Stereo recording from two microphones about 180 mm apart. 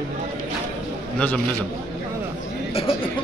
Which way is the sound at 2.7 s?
30° left (ahead or behind).